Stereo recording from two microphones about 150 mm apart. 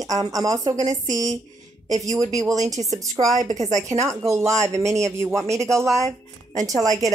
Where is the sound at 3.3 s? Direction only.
55° right (ahead or behind).